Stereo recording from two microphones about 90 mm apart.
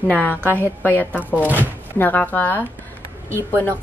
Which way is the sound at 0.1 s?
20° left (ahead or behind).